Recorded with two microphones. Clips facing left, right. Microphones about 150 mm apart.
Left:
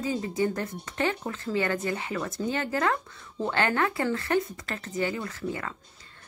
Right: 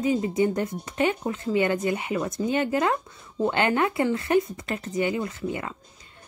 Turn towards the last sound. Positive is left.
turn(degrees=-20)  # may be behind; listen again after turning